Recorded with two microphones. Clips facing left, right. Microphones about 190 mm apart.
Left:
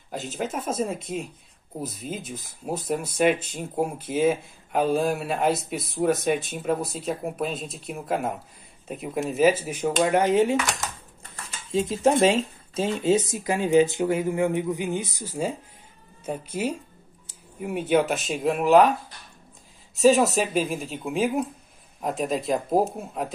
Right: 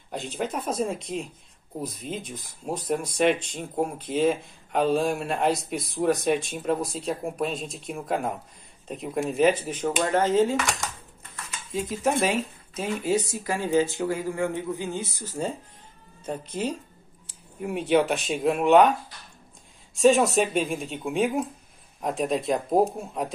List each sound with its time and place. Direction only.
0.1 s speech: centre (ahead or behind)
10.6 s speech: centre (ahead or behind)
11.7 s speech: 25° left (ahead or behind); by 18.9 s centre (ahead or behind)
20.0 s speech: centre (ahead or behind)